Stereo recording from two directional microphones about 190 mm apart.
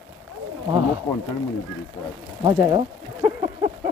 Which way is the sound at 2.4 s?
20° right (ahead or behind).